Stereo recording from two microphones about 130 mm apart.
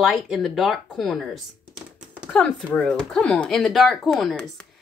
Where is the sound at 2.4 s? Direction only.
5° left (ahead or behind).